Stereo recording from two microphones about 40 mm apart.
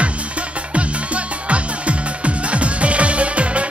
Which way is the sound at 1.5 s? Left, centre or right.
Right.